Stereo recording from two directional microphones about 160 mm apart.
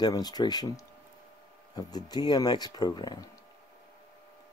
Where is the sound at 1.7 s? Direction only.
25° left (ahead or behind).